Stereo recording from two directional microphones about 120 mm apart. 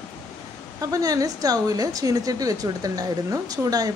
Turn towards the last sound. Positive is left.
turn(degrees=-30)  # may be behind; listen again after turning